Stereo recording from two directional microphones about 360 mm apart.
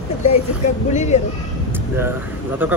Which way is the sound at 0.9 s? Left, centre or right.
Centre.